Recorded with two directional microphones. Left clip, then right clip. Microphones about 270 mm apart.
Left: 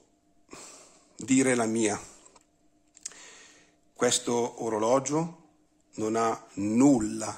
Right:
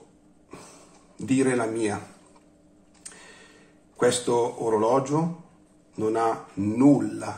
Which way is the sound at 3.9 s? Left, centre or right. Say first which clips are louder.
Right 4 dB; left.